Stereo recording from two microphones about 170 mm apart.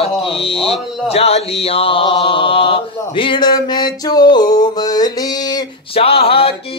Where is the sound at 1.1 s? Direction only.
35° left (ahead or behind).